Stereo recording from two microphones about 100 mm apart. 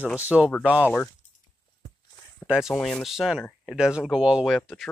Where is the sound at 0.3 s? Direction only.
5° right (ahead or behind).